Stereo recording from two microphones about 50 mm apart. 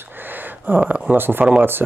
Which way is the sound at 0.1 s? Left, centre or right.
Right.